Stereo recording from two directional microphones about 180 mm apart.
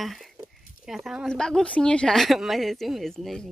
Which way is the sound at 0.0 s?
Centre (ahead or behind).